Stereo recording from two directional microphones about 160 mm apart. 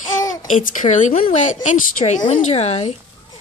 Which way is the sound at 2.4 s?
40° left (ahead or behind).